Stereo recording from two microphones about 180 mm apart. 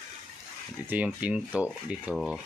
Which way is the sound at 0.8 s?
10° right (ahead or behind).